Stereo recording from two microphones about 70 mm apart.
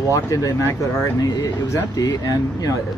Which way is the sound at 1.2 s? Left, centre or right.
Left.